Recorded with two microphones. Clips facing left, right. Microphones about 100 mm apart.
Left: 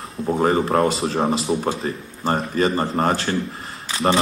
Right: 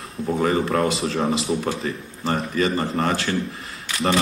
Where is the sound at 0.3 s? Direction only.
35° left (ahead or behind).